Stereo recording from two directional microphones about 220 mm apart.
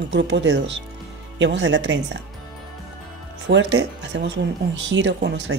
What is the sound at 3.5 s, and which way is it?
Speech, 55° right (ahead or behind).